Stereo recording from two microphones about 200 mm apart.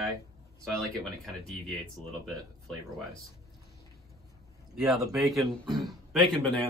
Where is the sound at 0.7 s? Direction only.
Centre (ahead or behind).